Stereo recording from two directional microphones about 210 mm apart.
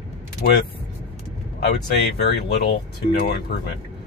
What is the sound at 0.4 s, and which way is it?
Speech, 45° left (ahead or behind).